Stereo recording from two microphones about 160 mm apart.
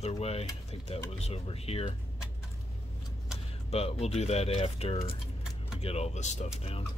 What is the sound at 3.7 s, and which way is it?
Speech, 40° left (ahead or behind).